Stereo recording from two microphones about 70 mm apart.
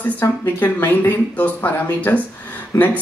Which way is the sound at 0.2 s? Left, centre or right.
Left.